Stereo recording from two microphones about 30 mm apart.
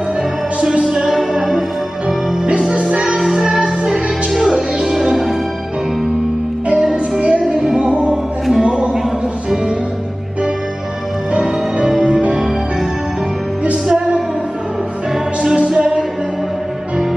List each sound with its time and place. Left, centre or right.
1.3 s music: centre
2.7 s music: right
3.2 s music: centre
6.8 s music: right
8.6 s music: right
11.3 s music: right